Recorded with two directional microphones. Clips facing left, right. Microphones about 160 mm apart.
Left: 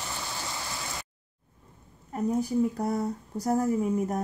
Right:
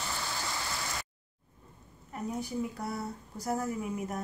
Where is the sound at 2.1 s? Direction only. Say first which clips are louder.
Left 8 dB; 40° left (ahead or behind).